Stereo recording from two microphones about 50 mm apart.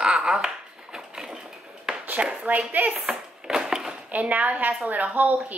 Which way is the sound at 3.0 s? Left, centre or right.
Centre.